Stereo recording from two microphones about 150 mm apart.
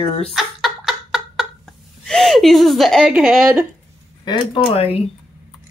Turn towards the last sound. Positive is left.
turn(degrees=35)  # may be behind; listen again after turning